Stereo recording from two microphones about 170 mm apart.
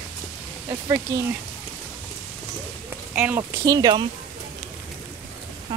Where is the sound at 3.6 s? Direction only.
25° right (ahead or behind).